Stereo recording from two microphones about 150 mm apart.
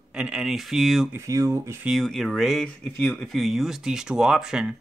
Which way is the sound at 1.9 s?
Centre (ahead or behind).